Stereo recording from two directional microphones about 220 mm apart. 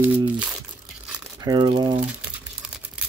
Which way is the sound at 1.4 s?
15° right (ahead or behind).